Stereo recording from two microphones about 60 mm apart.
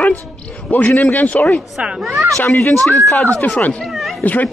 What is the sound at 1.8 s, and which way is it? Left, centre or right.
Speech, centre.